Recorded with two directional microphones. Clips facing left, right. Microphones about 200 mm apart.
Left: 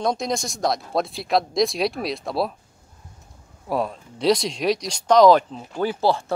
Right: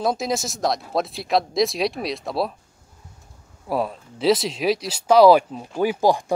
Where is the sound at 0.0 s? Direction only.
5° right (ahead or behind).